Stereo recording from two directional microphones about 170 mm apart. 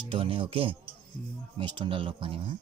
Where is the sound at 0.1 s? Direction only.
35° right (ahead or behind).